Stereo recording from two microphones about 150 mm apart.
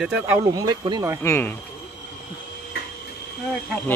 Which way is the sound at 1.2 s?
15° left (ahead or behind).